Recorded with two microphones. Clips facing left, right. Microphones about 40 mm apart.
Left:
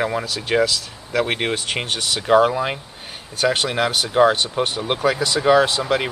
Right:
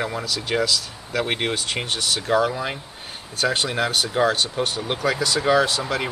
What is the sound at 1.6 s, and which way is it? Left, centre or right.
Speech, left.